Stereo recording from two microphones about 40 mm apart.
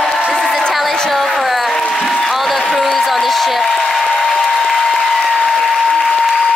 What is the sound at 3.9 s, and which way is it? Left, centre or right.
Applause, centre.